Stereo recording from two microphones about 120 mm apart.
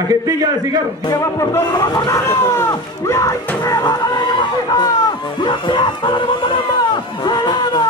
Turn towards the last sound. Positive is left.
turn(degrees=35)  # may be behind; listen again after turning